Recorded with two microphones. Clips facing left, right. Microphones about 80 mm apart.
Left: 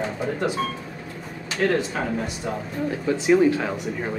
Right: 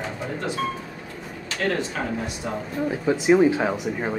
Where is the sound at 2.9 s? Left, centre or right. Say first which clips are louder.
Right 1 dB; centre.